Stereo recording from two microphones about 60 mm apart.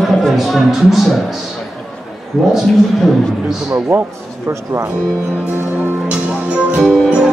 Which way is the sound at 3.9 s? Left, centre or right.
Right.